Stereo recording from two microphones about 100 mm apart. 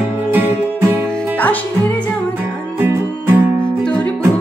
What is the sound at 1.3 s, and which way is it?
Music, 15° left (ahead or behind).